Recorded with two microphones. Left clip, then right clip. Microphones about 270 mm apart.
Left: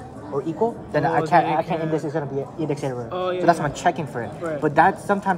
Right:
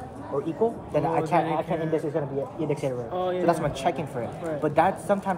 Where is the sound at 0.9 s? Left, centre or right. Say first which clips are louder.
Left 8 dB; left.